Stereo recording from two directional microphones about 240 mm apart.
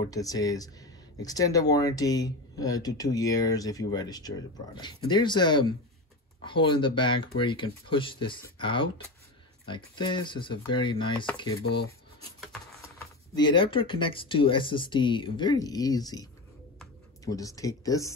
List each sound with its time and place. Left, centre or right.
0.0 s speech: centre
12.8 s speech: centre